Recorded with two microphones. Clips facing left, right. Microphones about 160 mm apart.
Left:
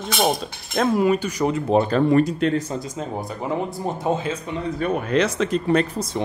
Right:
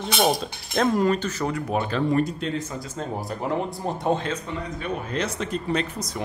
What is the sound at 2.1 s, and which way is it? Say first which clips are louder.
Speech: left 6 dB; 85° left.